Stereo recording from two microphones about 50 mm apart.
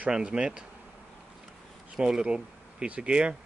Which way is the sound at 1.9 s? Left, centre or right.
Centre.